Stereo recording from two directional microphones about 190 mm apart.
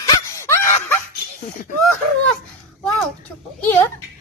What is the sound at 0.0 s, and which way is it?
Wail, 15° left (ahead or behind).